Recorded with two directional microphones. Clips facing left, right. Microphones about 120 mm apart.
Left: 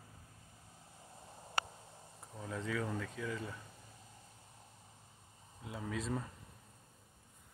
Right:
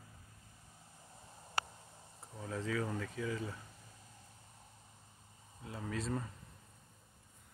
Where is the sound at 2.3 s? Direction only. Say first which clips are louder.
Right 1 dB; centre (ahead or behind).